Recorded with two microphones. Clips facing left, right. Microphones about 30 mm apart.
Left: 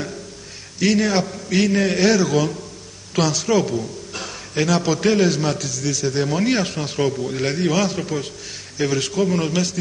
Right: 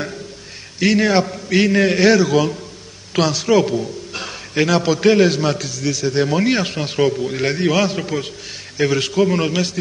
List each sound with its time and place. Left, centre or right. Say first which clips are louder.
0.7 s a man's voice: right 3 dB; right